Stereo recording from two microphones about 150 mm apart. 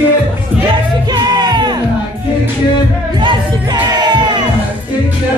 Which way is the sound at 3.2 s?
30° right (ahead or behind).